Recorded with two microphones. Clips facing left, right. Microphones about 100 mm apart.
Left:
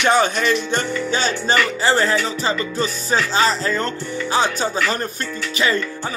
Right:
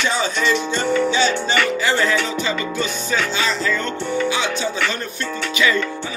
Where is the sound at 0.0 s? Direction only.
55° left (ahead or behind).